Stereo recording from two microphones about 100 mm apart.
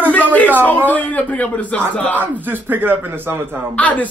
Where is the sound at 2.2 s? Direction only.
20° right (ahead or behind).